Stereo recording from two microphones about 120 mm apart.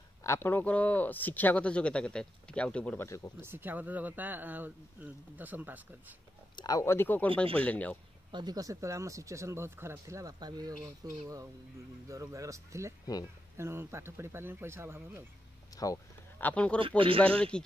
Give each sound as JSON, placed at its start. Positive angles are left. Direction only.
{"t": 0.2, "sound": "speech", "side_deg": 20}
{"t": 3.1, "sound": "speech", "side_deg": 25}
{"t": 3.3, "sound": "speech", "side_deg": -20}
{"t": 6.5, "sound": "speech", "side_deg": 30}
{"t": 8.3, "sound": "speech", "side_deg": -35}
{"t": 15.7, "sound": "a sound", "side_deg": 30}
{"t": 16.3, "sound": "speech", "side_deg": 10}
{"t": 16.8, "sound": "speech", "side_deg": -45}
{"t": 17.4, "sound": "speech", "side_deg": 10}